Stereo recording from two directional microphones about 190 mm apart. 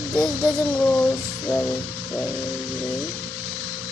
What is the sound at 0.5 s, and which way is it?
Speech, 20° left (ahead or behind).